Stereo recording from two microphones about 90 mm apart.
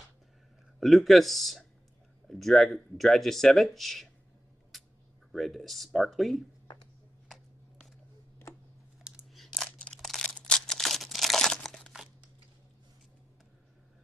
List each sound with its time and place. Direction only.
0.7 s speech: centre (ahead or behind)
4.7 s a sound: centre (ahead or behind)
5.3 s speech: centre (ahead or behind)
7.2 s a sound: centre (ahead or behind)
9.3 s crunch: centre (ahead or behind)
9.7 s crumpling: 10° left (ahead or behind)